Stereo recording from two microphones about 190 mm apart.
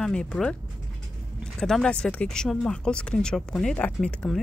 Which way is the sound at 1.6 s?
5° left (ahead or behind).